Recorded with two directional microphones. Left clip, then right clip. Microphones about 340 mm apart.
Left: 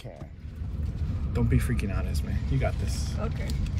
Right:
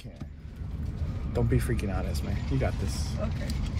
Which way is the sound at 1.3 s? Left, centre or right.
Centre.